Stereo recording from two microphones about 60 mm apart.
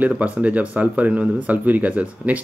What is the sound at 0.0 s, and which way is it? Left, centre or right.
Speech, right.